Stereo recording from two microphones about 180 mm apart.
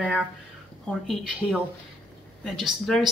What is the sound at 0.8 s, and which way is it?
Speech, centre (ahead or behind).